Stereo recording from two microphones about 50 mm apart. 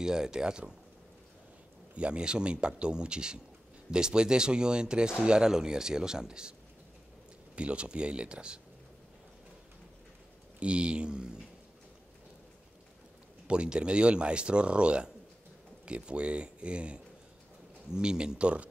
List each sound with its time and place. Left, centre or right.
0.0 s speech: centre
2.0 s speech: centre
7.5 s speech: right
10.6 s speech: right
13.5 s speech: right